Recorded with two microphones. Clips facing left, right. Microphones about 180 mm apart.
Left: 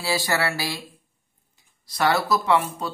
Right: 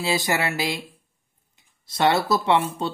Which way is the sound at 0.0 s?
20° right (ahead or behind).